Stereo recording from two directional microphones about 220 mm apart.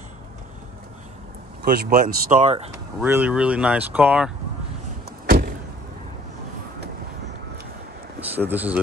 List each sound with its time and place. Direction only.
1.6 s speech: 40° right (ahead or behind)
3.0 s speech: 10° right (ahead or behind)
5.2 s vehicle: 45° right (ahead or behind)
8.2 s speech: 10° right (ahead or behind)